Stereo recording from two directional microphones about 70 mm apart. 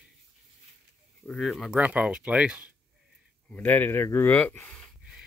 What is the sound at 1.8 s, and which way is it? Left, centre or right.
Speech, centre.